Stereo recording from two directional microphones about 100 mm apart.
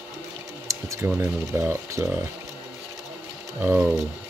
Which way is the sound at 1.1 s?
20° right (ahead or behind).